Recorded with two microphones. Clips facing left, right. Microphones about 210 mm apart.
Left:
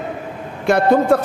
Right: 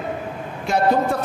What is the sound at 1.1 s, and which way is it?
Speech, 65° left (ahead or behind).